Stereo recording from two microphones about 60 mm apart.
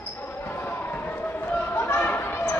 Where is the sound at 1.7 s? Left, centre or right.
Left.